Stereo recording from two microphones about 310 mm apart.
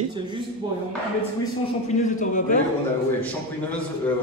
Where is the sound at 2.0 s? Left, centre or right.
Left.